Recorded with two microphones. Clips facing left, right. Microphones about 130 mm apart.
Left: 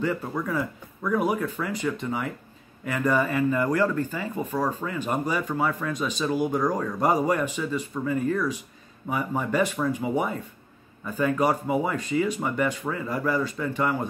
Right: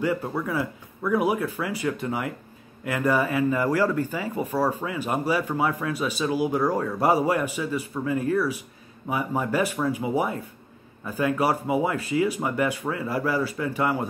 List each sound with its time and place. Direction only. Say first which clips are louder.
0.0 s speech: right 2 dB; 10° right (ahead or behind)